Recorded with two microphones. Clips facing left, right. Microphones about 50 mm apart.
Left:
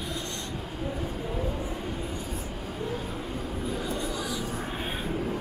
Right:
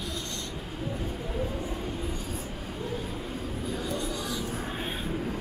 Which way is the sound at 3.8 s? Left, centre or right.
Centre.